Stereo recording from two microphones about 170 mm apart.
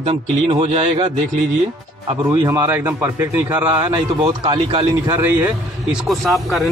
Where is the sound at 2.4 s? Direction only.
15° right (ahead or behind).